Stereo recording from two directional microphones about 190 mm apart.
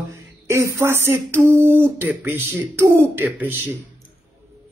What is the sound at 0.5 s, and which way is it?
Speech, 15° right (ahead or behind).